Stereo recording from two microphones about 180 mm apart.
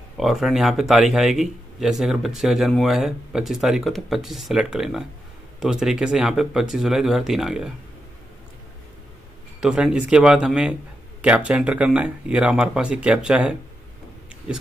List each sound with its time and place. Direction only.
0.2 s speech: centre (ahead or behind)
9.6 s speech: 5° right (ahead or behind)